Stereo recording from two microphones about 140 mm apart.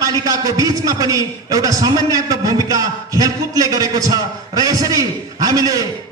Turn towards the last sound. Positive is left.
turn(degrees=-25)  # may be behind; listen again after turning